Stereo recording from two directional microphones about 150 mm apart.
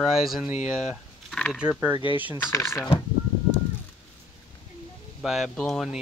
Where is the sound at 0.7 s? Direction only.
Centre (ahead or behind).